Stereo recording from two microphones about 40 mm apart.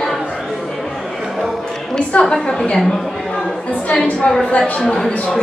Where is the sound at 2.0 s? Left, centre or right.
Left.